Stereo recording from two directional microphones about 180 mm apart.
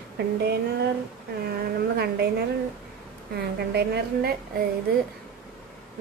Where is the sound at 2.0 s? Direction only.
65° right (ahead or behind).